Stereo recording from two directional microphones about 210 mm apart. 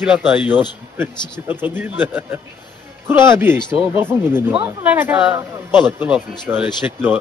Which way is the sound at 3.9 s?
10° right (ahead or behind).